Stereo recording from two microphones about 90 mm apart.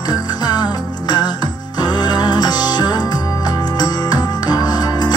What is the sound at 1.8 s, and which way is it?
Music, 50° left (ahead or behind).